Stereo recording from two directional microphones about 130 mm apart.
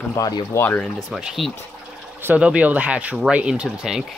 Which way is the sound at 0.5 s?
10° left (ahead or behind).